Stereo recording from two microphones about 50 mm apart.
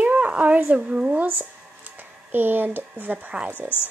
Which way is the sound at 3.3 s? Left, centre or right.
Right.